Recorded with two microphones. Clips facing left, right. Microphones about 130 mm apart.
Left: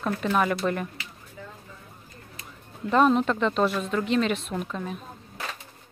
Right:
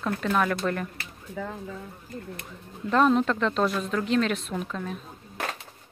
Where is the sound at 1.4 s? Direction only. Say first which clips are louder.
Right 9 dB; 90° right.